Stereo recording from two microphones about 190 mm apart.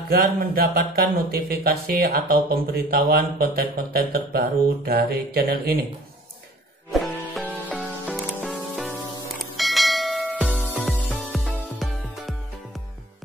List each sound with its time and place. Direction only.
0.1 s speech: 50° right (ahead or behind)
6.9 s music: 5° left (ahead or behind)